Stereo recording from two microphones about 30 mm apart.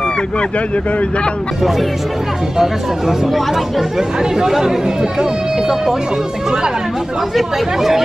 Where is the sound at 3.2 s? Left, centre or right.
Centre.